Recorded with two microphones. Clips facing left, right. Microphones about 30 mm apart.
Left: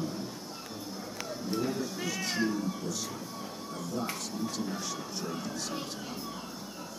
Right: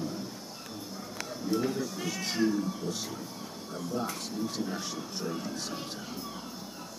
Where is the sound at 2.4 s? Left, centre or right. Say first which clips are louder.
Right 4 dB; centre.